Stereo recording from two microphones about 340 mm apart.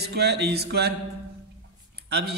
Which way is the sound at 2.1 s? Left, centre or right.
Right.